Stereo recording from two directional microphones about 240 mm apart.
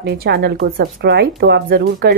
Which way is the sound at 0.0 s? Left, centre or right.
Right.